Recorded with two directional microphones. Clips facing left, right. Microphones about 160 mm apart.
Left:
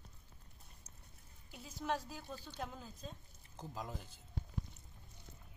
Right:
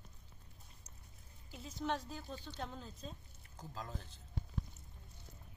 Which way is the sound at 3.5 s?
20° left (ahead or behind).